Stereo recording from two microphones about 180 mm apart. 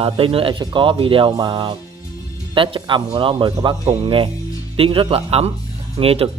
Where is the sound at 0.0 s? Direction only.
30° right (ahead or behind).